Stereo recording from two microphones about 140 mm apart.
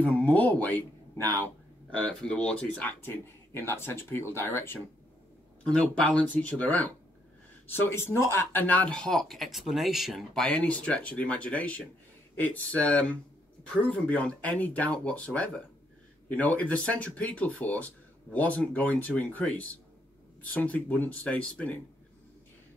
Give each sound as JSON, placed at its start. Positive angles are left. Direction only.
{"t": 0.0, "sound": "speech", "side_deg": 10}
{"t": 1.9, "sound": "speech", "side_deg": 10}
{"t": 5.6, "sound": "speech", "side_deg": 5}